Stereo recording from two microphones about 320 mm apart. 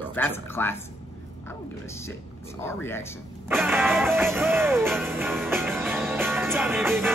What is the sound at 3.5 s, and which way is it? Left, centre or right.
Music, centre.